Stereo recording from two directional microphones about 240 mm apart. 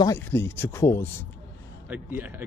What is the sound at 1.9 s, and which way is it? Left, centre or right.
Speech, centre.